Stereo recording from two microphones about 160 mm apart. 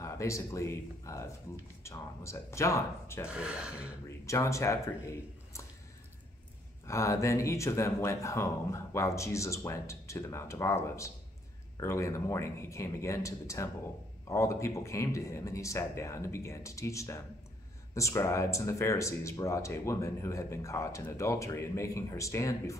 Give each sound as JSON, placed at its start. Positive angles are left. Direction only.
{"t": 0.0, "sound": "speech", "side_deg": 20}
{"t": 3.3, "sound": "speech", "side_deg": -5}
{"t": 4.3, "sound": "speech", "side_deg": 20}
{"t": 6.9, "sound": "speech", "side_deg": 20}